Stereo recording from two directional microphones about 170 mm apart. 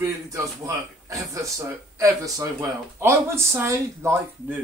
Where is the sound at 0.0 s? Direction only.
20° right (ahead or behind).